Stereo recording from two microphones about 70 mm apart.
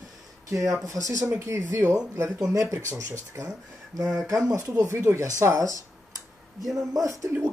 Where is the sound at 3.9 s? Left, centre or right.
Right.